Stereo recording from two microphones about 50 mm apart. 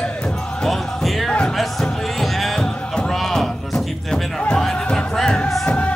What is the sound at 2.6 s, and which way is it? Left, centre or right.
Music, centre.